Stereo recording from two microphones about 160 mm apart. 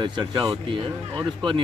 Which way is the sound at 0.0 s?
25° right (ahead or behind).